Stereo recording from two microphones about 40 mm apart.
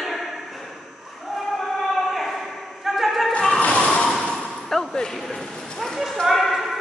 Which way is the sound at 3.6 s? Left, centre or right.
Left.